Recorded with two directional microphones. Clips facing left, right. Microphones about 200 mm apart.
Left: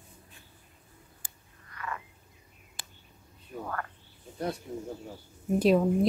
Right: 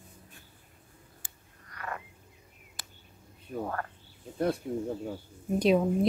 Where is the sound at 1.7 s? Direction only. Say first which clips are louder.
Even; 45° right (ahead or behind).